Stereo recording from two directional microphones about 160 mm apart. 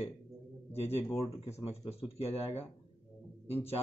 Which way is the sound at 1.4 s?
40° left (ahead or behind).